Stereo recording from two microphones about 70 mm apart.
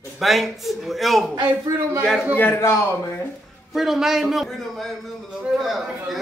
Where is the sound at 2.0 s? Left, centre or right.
Centre.